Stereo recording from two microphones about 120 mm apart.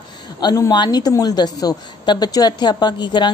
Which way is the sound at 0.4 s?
35° left (ahead or behind).